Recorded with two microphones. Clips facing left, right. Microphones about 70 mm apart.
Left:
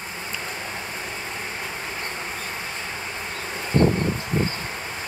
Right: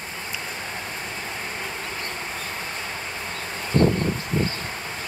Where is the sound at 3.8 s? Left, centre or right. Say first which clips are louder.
Even; left.